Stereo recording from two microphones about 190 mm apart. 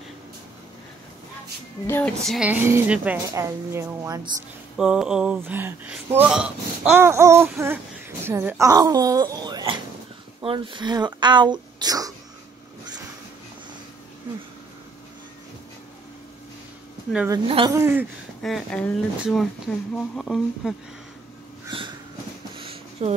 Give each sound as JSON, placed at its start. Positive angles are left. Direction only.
{"t": 1.9, "sound": "speech", "side_deg": 10}
{"t": 4.7, "sound": "speech", "side_deg": -5}
{"t": 17.5, "sound": "speech", "side_deg": -25}
{"t": 17.7, "sound": "speech", "side_deg": -10}
{"t": 18.4, "sound": "speech", "side_deg": 0}
{"t": 21.6, "sound": "a sound", "side_deg": -25}